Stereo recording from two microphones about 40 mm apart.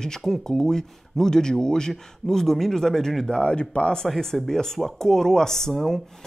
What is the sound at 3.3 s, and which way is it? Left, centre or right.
Speech, left.